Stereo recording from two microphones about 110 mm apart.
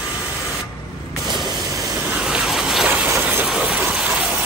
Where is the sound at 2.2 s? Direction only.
10° right (ahead or behind).